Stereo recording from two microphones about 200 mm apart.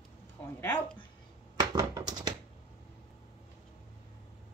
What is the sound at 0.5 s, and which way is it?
Speech, 10° left (ahead or behind).